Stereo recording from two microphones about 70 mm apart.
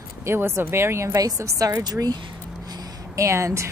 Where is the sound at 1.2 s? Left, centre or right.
Right.